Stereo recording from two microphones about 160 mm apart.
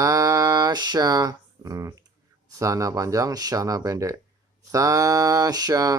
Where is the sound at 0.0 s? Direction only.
20° right (ahead or behind).